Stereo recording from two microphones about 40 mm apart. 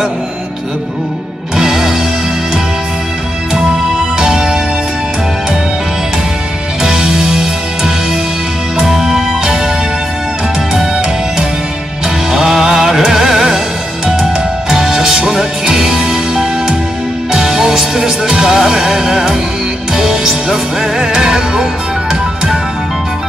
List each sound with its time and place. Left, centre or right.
1.6 s music: centre
4.2 s music: centre
6.8 s music: centre
10.7 s music: centre
14.7 s music: centre